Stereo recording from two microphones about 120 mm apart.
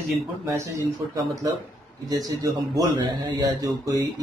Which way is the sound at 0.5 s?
25° right (ahead or behind).